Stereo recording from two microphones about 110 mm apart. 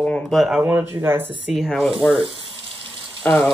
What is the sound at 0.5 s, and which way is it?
Speech, 15° right (ahead or behind).